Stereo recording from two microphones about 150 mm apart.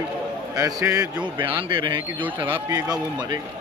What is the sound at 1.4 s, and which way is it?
Speech, 35° right (ahead or behind).